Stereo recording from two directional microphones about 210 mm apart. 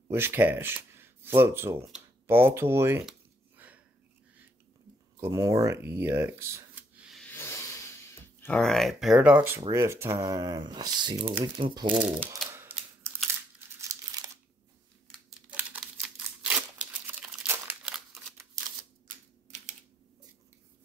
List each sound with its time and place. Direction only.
0.1 s speech: 10° right (ahead or behind)
5.2 s speech: 15° right (ahead or behind)
7.3 s speech: 10° left (ahead or behind); by 11.9 s 20° right (ahead or behind)
13.2 s crumpling: 10° right (ahead or behind)
15.0 s crumpling: 5° right (ahead or behind)
19.0 s typewriter: 35° right (ahead or behind)